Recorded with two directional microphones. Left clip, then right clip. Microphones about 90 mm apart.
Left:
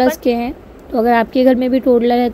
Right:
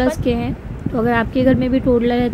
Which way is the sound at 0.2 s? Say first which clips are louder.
Left 4 dB; 35° left (ahead or behind).